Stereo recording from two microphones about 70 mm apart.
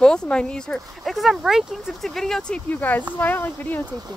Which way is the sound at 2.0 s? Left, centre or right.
Centre.